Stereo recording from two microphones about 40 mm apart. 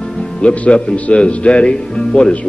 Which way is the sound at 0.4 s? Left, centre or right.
Left.